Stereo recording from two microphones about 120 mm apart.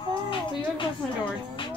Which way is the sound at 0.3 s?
45° left (ahead or behind).